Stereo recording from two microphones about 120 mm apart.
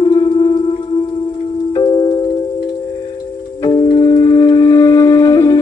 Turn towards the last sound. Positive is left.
turn(degrees=30)  # may be behind; listen again after turning